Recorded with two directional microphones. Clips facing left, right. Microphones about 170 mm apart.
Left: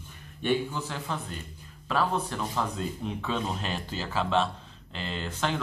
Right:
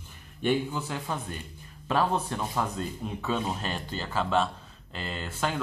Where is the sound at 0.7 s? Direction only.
15° right (ahead or behind).